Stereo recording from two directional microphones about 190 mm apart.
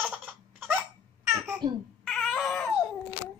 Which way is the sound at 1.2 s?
15° right (ahead or behind).